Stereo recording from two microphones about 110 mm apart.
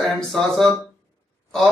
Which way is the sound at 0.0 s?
5° left (ahead or behind).